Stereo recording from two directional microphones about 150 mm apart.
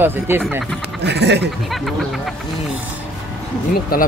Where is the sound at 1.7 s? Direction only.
Centre (ahead or behind).